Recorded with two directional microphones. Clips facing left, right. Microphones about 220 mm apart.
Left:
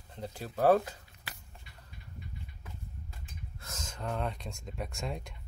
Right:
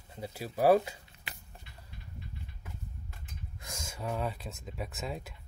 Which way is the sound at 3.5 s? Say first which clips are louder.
Right 1 dB; 15° right (ahead or behind).